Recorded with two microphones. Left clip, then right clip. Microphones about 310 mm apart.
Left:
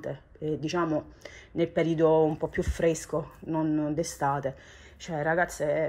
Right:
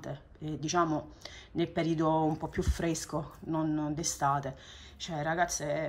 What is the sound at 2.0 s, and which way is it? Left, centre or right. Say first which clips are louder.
Speech: left 8 dB; right.